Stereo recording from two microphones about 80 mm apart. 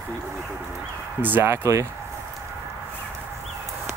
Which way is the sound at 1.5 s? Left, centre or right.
Right.